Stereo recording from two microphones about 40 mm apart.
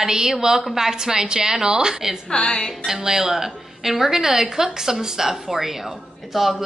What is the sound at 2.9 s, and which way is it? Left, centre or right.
A woman's voice, centre.